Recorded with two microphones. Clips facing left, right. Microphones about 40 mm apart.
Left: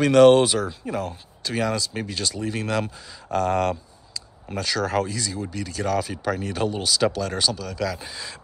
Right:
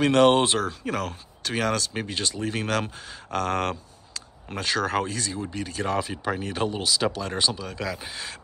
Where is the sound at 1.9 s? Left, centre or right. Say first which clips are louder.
Left 1 dB; right.